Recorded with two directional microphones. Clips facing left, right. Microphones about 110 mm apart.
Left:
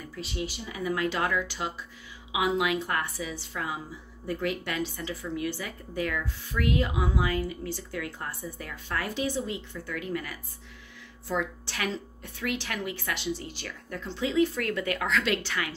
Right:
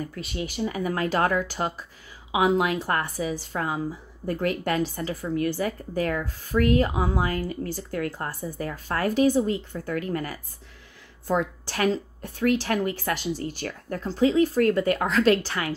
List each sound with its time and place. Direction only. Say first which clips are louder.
0.0 s a woman's voice: right 3 dB; 55° right (ahead or behind); by 15.7 s 40° right (ahead or behind)